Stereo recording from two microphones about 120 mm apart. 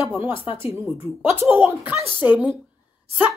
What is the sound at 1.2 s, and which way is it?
A woman's voice, 20° right (ahead or behind).